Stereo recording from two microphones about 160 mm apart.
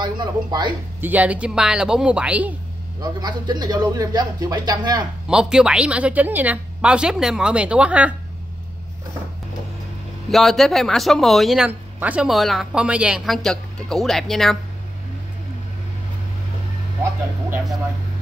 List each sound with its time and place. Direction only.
0.0 s a man's voice: 25° right (ahead or behind)
1.0 s a woman's voice: 10° right (ahead or behind)
3.0 s a man's voice: 25° right (ahead or behind)
5.3 s a woman's voice: 5° right (ahead or behind)
10.3 s speech: centre (ahead or behind)